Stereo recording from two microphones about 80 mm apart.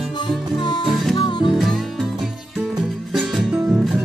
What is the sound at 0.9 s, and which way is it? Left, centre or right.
Music, centre.